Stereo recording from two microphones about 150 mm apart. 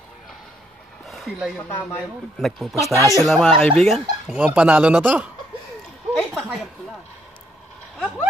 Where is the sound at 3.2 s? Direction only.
5° left (ahead or behind).